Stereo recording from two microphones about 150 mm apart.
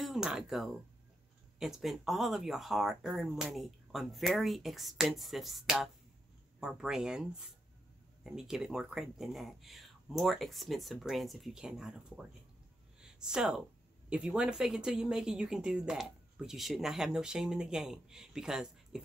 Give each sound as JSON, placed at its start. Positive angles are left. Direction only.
{"t": 0.0, "sound": "speech", "side_deg": -5}